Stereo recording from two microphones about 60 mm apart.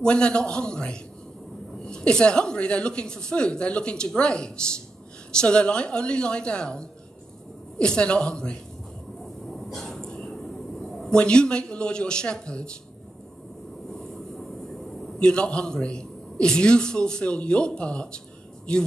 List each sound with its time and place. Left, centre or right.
0.0 s a man's voice: centre
9.5 s a sound: centre
15.1 s a man's voice: centre